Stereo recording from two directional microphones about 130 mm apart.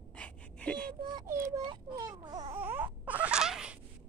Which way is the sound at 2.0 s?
30° right (ahead or behind).